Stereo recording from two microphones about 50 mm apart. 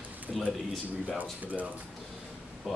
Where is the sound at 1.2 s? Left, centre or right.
Right.